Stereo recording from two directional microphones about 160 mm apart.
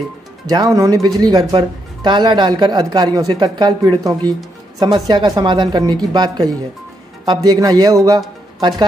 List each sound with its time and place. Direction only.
0.5 s speech: 25° right (ahead or behind)